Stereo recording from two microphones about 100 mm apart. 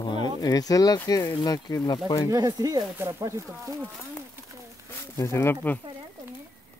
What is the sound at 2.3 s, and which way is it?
Speech, 40° right (ahead or behind).